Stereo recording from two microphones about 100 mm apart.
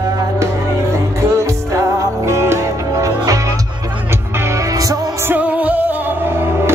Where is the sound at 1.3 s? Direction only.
30° right (ahead or behind).